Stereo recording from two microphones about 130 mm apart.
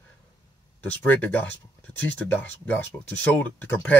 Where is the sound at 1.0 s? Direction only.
15° left (ahead or behind).